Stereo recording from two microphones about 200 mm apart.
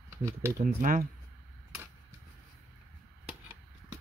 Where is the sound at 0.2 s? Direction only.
15° right (ahead or behind).